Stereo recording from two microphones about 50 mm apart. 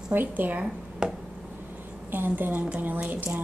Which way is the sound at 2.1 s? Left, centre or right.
Right.